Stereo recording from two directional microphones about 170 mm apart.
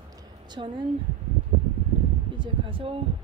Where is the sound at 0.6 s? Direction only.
30° right (ahead or behind).